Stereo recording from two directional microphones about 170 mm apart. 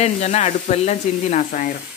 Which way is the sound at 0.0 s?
40° left (ahead or behind).